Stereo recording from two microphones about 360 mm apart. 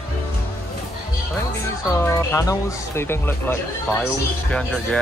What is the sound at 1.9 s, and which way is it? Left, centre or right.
Speech, centre.